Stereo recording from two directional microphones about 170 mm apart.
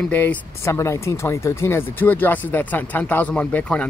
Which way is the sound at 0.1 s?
10° left (ahead or behind).